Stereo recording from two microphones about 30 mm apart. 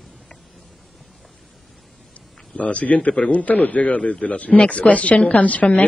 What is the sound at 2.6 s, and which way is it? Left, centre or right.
Speech, left.